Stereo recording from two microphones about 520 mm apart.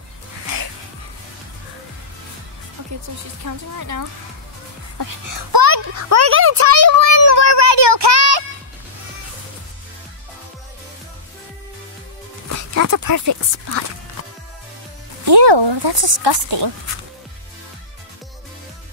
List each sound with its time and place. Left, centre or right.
3.4 s a child's voice: right
5.9 s speech: right
7.2 s child singing: right
12.4 s speech: right
15.2 s speech: right